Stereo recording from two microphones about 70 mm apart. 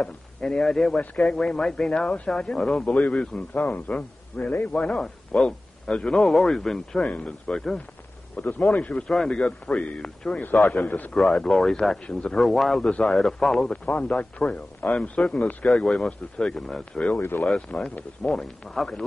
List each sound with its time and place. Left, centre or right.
0.0 s speech: centre
2.9 s a man's voice: centre
7.0 s speech: centre
8.4 s a man's voice: left
10.8 s a man's voice: left
11.1 s speech: centre
13.8 s speech: centre
17.2 s speech: left
17.5 s speech: centre
18.3 s speech: centre